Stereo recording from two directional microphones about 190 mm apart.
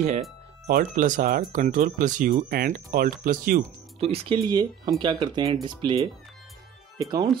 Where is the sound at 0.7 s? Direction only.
45° right (ahead or behind).